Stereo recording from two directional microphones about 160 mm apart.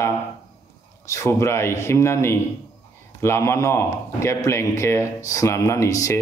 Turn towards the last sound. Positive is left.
turn(degrees=20)  # may be behind; listen again after turning